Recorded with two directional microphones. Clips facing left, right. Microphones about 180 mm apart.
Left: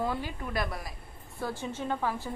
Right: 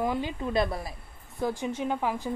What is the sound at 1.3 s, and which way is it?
Speech, 15° right (ahead or behind).